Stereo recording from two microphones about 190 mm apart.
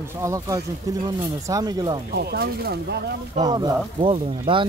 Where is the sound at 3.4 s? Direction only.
20° right (ahead or behind).